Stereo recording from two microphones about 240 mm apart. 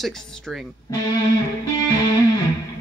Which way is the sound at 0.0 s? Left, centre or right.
Centre.